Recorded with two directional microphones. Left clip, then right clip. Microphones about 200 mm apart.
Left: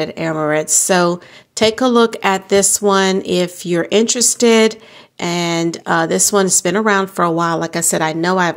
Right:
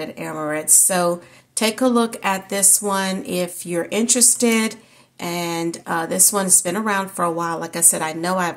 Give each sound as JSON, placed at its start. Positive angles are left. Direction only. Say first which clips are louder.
{"t": 0.0, "sound": "a woman's voice", "louder": "left 8 dB", "side_deg": 40}